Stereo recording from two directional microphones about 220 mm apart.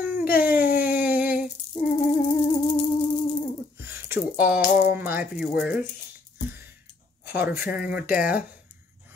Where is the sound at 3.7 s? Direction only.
10° right (ahead or behind).